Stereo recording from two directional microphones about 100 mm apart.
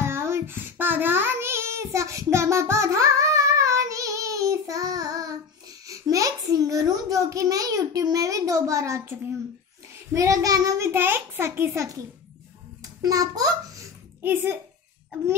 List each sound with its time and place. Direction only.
0.0 s child singing: 25° right (ahead or behind)
5.9 s a child's voice: 35° right (ahead or behind)
10.9 s a child's voice: 20° right (ahead or behind); by 13.8 s 35° right (ahead or behind)
14.2 s a child's voice: 20° right (ahead or behind)